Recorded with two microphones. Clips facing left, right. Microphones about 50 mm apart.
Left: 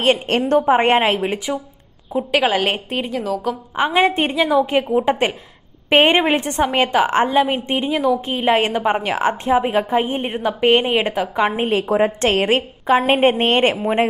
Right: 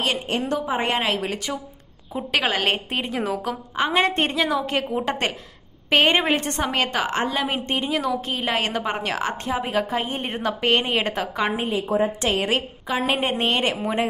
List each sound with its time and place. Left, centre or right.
0.5 s a woman's voice: left
2.1 s a woman's voice: centre
3.1 s a woman's voice: centre
3.7 s a woman's voice: centre
7.4 s a woman's voice: centre
12.2 s a woman's voice: left